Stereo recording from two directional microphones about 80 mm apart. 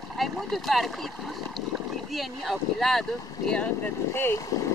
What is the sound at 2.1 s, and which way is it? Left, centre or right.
Speech, centre.